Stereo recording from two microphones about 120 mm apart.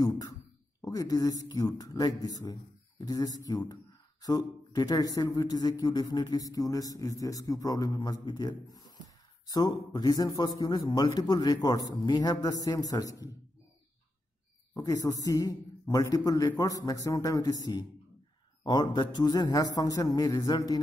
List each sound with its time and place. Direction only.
0.0 s speech: 30° left (ahead or behind)
14.7 s a man's voice: 25° left (ahead or behind)
18.6 s speech: 35° left (ahead or behind)